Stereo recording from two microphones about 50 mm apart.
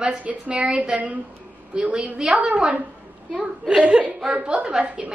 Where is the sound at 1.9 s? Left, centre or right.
Centre.